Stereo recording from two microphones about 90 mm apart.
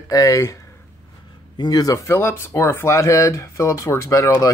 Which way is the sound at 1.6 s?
45° left (ahead or behind).